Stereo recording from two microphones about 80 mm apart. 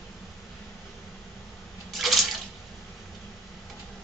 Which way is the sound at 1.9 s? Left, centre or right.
Centre.